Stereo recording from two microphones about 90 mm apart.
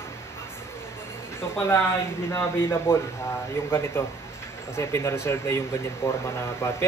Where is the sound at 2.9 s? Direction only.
30° left (ahead or behind).